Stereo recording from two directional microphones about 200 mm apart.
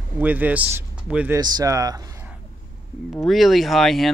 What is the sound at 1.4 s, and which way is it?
Speech, 20° right (ahead or behind).